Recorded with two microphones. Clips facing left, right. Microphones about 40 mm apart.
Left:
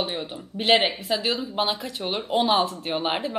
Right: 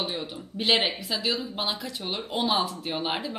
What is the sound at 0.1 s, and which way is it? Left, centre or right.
A woman's voice, left.